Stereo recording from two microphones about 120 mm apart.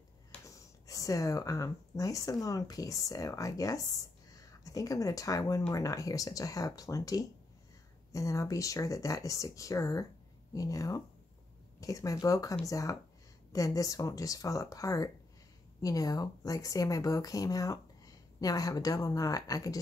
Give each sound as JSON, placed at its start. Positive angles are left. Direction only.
{"t": 0.5, "sound": "a woman's voice", "side_deg": 25}